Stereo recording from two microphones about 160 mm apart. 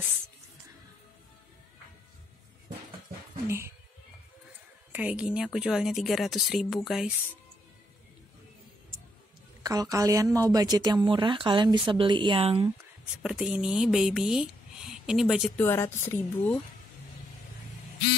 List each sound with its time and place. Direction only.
3.4 s a sound: 15° right (ahead or behind)
4.9 s speech: 5° right (ahead or behind)
9.6 s a woman's voice: 25° right (ahead or behind)
13.2 s speech: 5° right (ahead or behind)
15.5 s speech: 15° left (ahead or behind)